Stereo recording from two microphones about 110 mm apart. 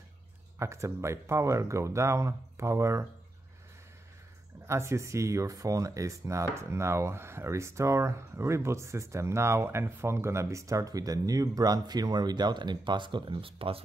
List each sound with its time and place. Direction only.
0.6 s speech: 25° right (ahead or behind)
4.6 s speech: 25° right (ahead or behind); by 13.8 s 60° right (ahead or behind)